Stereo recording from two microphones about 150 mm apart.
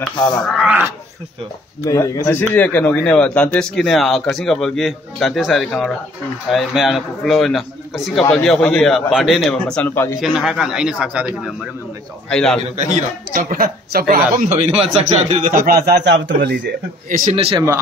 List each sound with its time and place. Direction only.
0.4 s a man's voice: centre (ahead or behind)
1.9 s speech: 20° left (ahead or behind)
2.3 s a man's voice: 10° left (ahead or behind)
8.8 s a man's voice: centre (ahead or behind); by 10.1 s 15° left (ahead or behind)
10.2 s a man's voice: centre (ahead or behind)
12.3 s a man's voice: 5° left (ahead or behind)
13.3 s a woman's voice: 65° right (ahead or behind)
14.3 s a man's voice: 50° right (ahead or behind); by 16.5 s 90° right
17.1 s a man's voice: 60° right (ahead or behind)
17.4 s speech: 40° right (ahead or behind)